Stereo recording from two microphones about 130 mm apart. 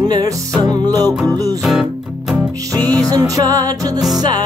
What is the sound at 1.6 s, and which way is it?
Music, centre (ahead or behind).